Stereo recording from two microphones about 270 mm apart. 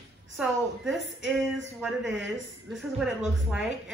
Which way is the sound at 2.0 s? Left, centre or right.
Right.